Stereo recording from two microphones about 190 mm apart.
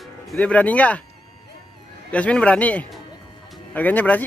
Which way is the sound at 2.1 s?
5° left (ahead or behind).